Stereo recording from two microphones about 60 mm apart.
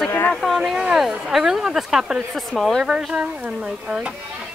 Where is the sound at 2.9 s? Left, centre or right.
Centre.